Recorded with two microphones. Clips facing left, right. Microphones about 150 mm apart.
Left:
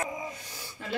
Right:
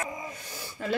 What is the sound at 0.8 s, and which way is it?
Speech, 50° right (ahead or behind).